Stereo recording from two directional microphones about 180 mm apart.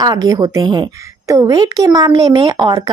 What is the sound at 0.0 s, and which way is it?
Speech, 20° right (ahead or behind).